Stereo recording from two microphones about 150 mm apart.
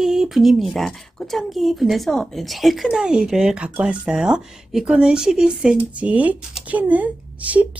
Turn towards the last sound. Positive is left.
turn(degrees=-10)  # may be behind; listen again after turning